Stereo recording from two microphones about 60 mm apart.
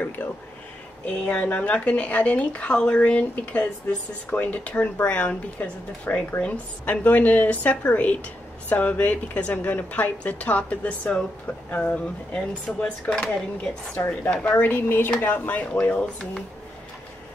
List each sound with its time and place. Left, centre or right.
0.2 s speech: centre